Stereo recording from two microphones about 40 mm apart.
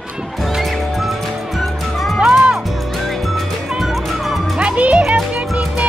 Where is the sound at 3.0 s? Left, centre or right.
Centre.